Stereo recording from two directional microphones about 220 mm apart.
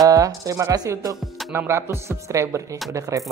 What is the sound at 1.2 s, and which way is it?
Music, centre (ahead or behind).